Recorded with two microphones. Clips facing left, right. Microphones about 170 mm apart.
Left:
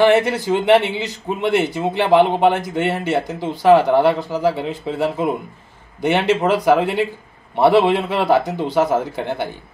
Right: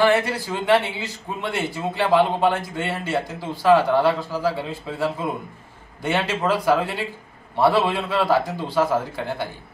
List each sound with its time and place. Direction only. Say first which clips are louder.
0.0 s speech: left 5 dB; 20° left (ahead or behind)